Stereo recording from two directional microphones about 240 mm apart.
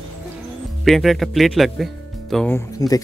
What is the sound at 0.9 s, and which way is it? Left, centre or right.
Speech, centre.